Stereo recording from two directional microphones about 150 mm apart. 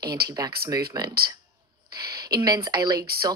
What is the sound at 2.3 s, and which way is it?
Speech, 25° right (ahead or behind).